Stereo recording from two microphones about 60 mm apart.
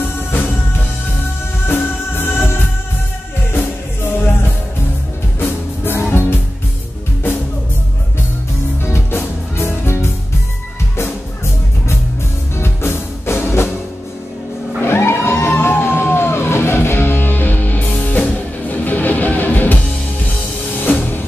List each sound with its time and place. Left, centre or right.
1.7 s music: left
5.9 s music: left
8.8 s music: left
12.5 s music: left
14.8 s music: left